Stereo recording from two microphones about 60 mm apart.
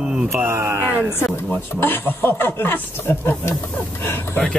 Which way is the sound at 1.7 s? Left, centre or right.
Left.